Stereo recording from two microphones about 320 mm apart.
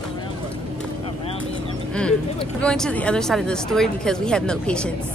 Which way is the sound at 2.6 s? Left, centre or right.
Centre.